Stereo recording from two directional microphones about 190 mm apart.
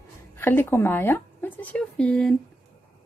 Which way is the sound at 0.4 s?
10° left (ahead or behind).